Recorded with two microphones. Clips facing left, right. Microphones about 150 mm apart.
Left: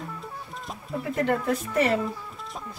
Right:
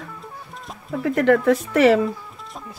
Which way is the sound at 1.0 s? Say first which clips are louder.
Right 9 dB; 90° right.